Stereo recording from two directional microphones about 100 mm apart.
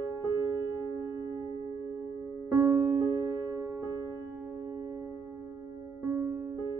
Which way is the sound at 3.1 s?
35° right (ahead or behind).